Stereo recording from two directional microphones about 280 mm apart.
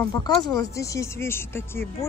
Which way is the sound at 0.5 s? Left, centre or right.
Centre.